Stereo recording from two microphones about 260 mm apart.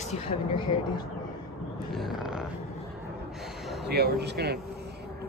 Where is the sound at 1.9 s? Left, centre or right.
Centre.